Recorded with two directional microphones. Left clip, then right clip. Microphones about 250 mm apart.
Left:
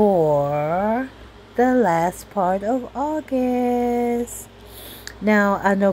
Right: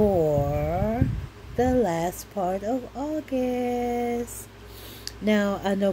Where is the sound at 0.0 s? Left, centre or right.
Left.